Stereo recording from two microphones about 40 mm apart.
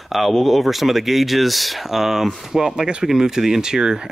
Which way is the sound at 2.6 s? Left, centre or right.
Right.